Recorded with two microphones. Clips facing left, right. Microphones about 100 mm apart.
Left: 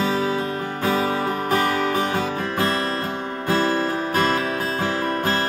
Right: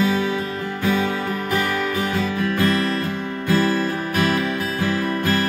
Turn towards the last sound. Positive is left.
turn(degrees=30)  # may be behind; listen again after turning